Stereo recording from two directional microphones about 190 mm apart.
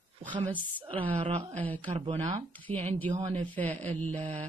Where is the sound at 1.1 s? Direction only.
30° right (ahead or behind).